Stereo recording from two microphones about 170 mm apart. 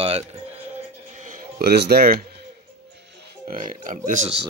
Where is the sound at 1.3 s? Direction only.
60° right (ahead or behind).